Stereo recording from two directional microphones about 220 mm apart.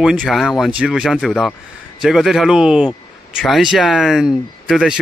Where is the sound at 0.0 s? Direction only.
Centre (ahead or behind).